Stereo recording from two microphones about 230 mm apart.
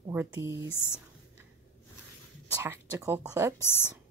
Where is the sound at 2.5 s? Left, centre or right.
Centre.